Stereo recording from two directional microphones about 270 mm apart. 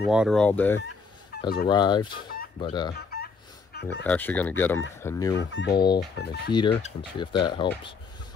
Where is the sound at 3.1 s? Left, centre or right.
Left.